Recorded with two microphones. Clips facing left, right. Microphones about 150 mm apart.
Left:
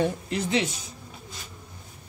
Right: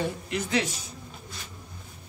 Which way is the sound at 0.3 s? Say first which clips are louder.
Left 2 dB; 25° left (ahead or behind).